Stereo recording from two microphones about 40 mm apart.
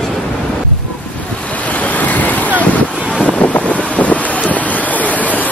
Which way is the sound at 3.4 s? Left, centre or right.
Left.